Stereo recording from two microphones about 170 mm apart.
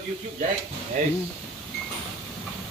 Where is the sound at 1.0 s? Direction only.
45° right (ahead or behind).